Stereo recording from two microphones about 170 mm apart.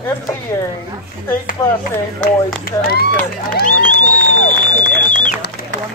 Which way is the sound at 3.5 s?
55° left (ahead or behind).